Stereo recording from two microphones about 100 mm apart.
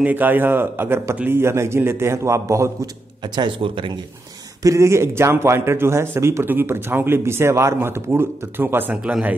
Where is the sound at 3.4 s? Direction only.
60° right (ahead or behind).